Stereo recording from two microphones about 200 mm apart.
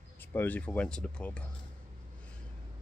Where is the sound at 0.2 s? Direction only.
10° left (ahead or behind).